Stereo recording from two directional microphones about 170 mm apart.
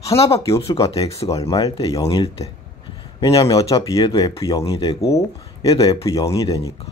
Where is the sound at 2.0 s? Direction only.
35° left (ahead or behind).